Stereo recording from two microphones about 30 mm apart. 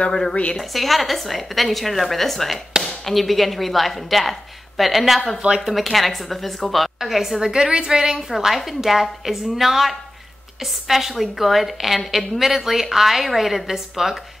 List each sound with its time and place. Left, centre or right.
0.1 s a woman's voice: centre
0.6 s a woman's voice: centre
7.0 s speech: centre
7.3 s a woman's voice: right
8.5 s a woman's voice: centre